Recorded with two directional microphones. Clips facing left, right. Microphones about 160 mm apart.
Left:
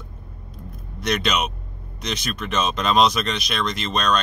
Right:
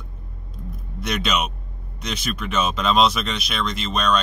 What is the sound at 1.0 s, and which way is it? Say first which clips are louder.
Speech: left 1 dB; 5° right (ahead or behind).